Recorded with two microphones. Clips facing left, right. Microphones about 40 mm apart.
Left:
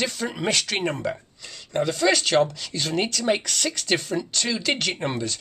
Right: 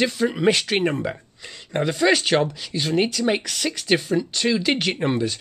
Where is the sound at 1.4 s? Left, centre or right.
Right.